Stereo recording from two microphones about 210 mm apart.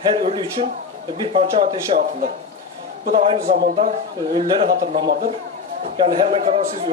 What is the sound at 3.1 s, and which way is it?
Speech, 30° right (ahead or behind).